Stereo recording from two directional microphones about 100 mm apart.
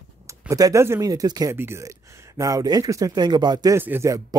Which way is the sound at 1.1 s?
40° right (ahead or behind).